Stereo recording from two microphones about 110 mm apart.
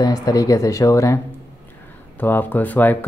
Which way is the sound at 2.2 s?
15° left (ahead or behind).